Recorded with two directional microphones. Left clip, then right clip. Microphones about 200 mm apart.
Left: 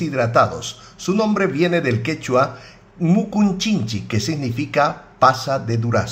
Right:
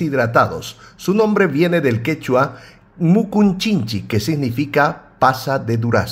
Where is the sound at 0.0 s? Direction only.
35° right (ahead or behind).